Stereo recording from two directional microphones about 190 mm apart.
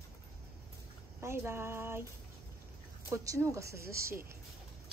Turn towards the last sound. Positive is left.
turn(degrees=-15)  # may be behind; listen again after turning